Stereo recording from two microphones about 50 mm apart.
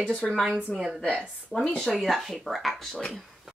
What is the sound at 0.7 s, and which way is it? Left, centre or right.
A woman's voice, centre.